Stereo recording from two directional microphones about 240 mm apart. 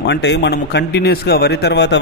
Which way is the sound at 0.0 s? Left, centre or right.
Left.